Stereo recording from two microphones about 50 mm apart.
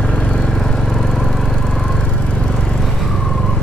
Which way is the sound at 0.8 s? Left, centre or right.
Centre.